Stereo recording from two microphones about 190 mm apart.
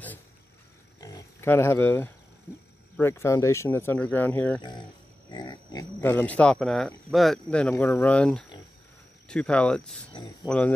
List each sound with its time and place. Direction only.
1.0 s wild animals: 15° left (ahead or behind)
3.0 s speech: 15° left (ahead or behind)
4.6 s speech: 25° left (ahead or behind)
5.3 s pig: 20° left (ahead or behind)
5.9 s speech: 10° left (ahead or behind)